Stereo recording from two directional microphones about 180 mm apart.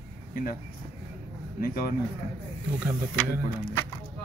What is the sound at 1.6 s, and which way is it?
Speech, 55° left (ahead or behind).